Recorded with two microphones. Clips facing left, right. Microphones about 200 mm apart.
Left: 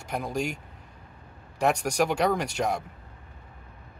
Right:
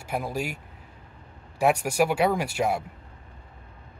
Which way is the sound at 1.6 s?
5° right (ahead or behind).